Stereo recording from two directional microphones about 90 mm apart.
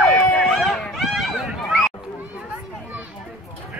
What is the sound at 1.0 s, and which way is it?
Run, 5° right (ahead or behind).